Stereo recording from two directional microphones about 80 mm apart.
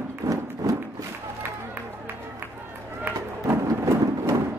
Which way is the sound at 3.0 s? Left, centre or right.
Right.